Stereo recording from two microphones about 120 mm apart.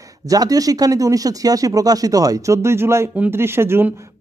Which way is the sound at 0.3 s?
30° right (ahead or behind).